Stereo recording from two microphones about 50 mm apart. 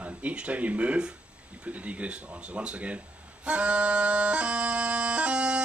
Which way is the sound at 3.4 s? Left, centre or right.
Right.